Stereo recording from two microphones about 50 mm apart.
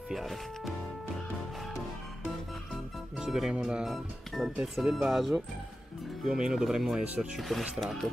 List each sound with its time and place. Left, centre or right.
0.1 s speech: centre
2.7 s music: centre
3.5 s speech: centre
3.8 s speech: centre